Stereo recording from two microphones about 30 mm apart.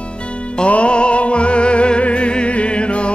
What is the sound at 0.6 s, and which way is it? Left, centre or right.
Music, left.